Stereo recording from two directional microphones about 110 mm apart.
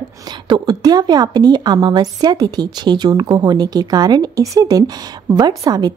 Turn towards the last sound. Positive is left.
turn(degrees=-35)  # may be behind; listen again after turning